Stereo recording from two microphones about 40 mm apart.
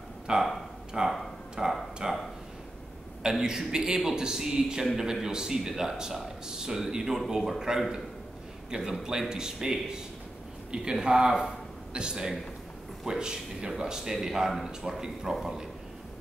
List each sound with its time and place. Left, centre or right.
0.4 s speech: centre
1.0 s speech: centre
1.6 s a sound: centre
3.2 s a man's voice: centre